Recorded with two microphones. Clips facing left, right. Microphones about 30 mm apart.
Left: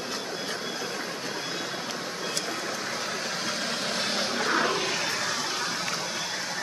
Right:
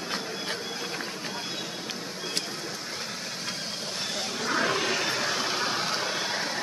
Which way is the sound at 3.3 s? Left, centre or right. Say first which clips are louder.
Left 4 dB; left.